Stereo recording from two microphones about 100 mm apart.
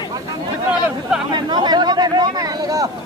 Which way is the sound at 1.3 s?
45° right (ahead or behind).